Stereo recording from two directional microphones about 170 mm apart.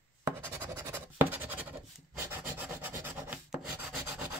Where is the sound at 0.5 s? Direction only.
15° right (ahead or behind).